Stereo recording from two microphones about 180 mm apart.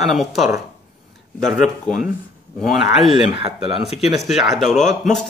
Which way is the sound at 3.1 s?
30° right (ahead or behind).